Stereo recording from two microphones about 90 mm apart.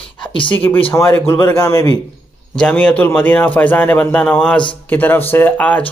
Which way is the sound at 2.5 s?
15° left (ahead or behind).